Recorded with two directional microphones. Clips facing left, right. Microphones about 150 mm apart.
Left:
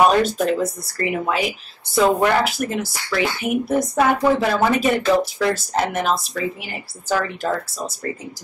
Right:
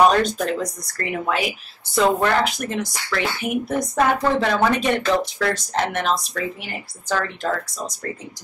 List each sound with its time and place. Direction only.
0.0 s speech: 5° left (ahead or behind)